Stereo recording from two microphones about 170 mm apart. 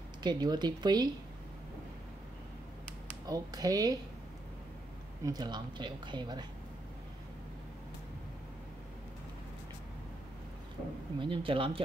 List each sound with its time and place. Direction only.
0.2 s speech: 25° right (ahead or behind)
3.3 s speech: 20° right (ahead or behind)
5.2 s speech: 25° right (ahead or behind)
11.1 s speech: 30° right (ahead or behind)